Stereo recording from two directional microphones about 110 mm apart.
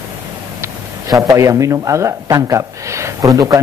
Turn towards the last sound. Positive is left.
turn(degrees=-35)  # may be behind; listen again after turning